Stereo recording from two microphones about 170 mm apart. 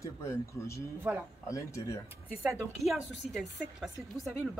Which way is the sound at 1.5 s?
20° left (ahead or behind).